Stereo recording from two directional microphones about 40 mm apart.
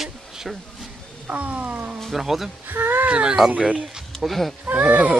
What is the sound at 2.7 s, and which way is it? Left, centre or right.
Speech, right.